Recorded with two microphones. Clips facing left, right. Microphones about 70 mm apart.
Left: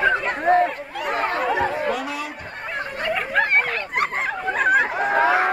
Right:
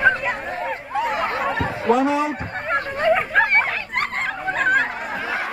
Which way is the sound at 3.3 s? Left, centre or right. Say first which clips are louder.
Right 2 dB; centre.